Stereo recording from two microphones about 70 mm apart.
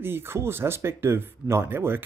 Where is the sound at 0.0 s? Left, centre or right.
Right.